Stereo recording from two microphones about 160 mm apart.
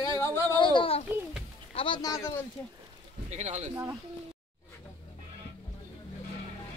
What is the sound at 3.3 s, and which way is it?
Speech, 45° right (ahead or behind).